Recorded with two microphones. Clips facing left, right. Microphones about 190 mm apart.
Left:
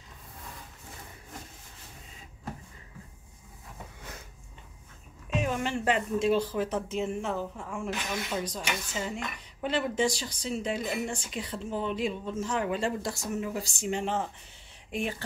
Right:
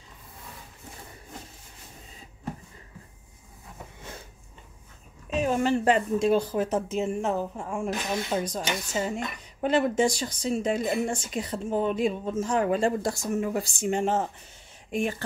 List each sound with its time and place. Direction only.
5.3 s speech: 35° right (ahead or behind)
7.9 s speech: 35° right (ahead or behind)